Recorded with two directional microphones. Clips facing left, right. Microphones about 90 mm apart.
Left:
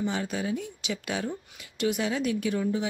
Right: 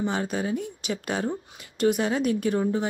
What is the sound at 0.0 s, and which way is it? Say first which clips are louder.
Speech: right 3 dB; 40° right (ahead or behind).